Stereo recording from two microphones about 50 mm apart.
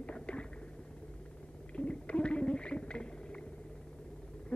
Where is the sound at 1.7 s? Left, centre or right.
Left.